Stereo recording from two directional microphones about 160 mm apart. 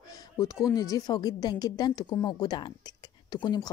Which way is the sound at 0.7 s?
20° left (ahead or behind).